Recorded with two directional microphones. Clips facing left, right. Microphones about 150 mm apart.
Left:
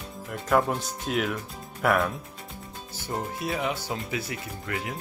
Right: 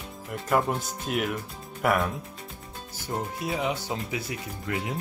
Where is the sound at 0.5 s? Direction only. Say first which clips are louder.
Left 1 dB; 5° right (ahead or behind).